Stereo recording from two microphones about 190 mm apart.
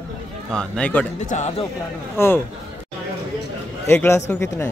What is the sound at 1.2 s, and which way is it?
Speech, 40° left (ahead or behind).